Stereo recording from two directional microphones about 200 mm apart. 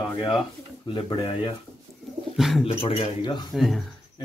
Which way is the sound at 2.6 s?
30° left (ahead or behind).